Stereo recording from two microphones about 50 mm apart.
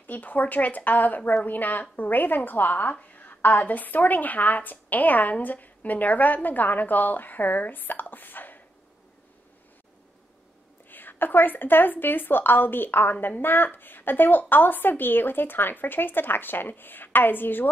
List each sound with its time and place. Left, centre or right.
0.0 s a woman's voice: left
10.9 s a woman's voice: left